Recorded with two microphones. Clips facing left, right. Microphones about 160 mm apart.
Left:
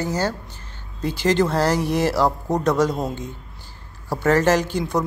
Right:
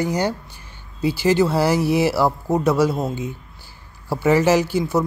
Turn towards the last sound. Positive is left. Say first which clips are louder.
# right 3 dB
turn(degrees=-5)  # may be behind; listen again after turning